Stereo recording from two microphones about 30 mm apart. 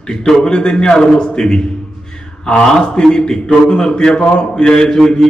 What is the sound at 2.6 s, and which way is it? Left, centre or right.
Speech, centre.